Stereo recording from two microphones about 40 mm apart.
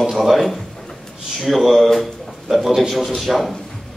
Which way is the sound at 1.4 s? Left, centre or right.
Centre.